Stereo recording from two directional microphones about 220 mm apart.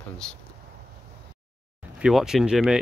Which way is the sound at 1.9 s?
5° right (ahead or behind).